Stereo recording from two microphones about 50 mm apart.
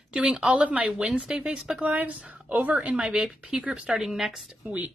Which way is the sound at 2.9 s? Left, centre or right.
Centre.